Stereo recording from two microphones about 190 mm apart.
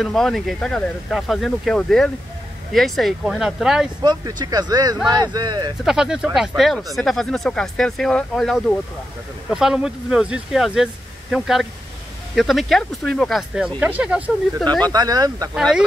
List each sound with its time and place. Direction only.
0.0 s speech: centre (ahead or behind)
4.0 s speech: 20° right (ahead or behind)
5.9 s speech: 5° right (ahead or behind)
14.9 s speech: 20° right (ahead or behind)
15.5 s speech: 5° right (ahead or behind)